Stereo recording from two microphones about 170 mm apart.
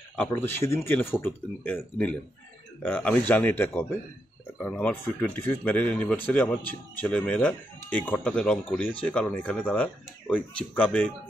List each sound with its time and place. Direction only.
0.1 s speech: 10° left (ahead or behind)